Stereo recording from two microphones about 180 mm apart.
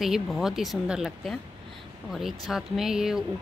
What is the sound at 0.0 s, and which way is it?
Speech, centre (ahead or behind).